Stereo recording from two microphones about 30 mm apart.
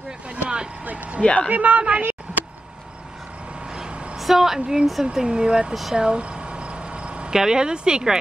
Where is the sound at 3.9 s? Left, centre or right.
Right.